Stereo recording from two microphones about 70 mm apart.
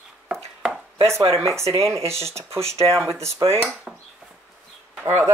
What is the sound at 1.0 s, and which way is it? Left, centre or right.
Speech, right.